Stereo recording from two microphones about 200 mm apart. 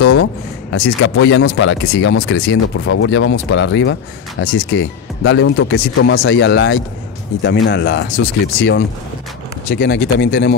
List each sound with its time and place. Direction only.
0.0 s speech: 60° left (ahead or behind)
9.7 s speech: 55° left (ahead or behind)